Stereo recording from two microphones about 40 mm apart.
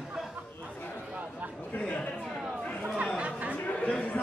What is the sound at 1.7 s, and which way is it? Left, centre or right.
Chatter, left.